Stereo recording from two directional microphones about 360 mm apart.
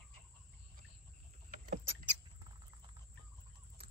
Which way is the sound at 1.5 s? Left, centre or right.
Right.